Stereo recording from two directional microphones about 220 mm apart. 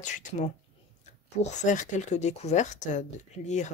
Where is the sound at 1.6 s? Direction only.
35° left (ahead or behind).